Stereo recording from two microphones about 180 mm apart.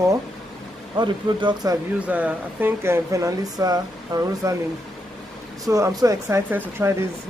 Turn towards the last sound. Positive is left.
turn(degrees=-15)  # may be behind; listen again after turning